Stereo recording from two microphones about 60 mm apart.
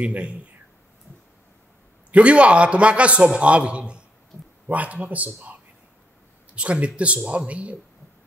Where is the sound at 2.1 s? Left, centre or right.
Centre.